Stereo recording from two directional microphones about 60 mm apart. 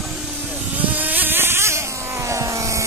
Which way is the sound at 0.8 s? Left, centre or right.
Right.